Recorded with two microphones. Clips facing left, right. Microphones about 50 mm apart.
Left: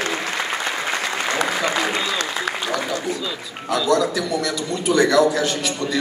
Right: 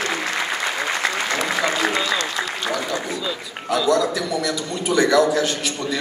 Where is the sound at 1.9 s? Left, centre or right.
Centre.